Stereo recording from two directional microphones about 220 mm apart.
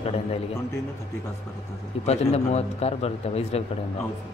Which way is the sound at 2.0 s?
30° left (ahead or behind).